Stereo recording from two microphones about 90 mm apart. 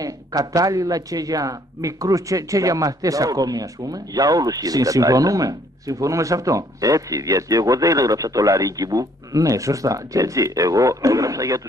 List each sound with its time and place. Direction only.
0.0 s speech: 45° right (ahead or behind)